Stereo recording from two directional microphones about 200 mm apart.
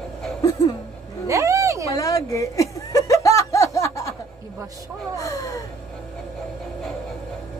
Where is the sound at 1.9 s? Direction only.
15° left (ahead or behind).